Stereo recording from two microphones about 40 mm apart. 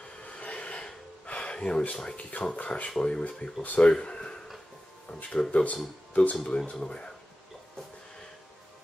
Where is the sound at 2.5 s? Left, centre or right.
Left.